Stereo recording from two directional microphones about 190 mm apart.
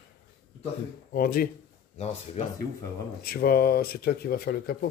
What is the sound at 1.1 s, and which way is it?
Mantra, 50° left (ahead or behind).